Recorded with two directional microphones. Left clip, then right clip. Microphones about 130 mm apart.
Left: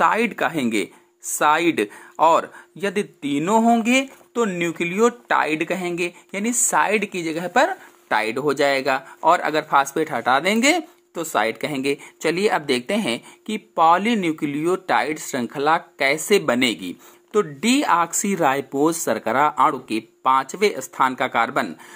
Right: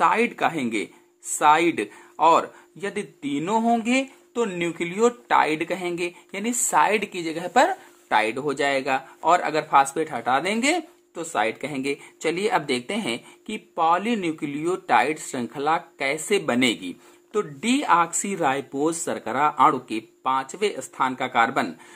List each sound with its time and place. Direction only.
0.0 s speech: 45° left (ahead or behind)